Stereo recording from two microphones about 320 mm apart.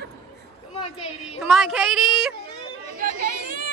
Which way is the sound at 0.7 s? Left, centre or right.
Centre.